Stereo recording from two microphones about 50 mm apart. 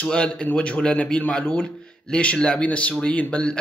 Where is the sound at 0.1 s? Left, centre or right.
Left.